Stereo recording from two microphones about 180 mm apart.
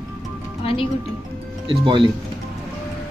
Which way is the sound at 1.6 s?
30° right (ahead or behind).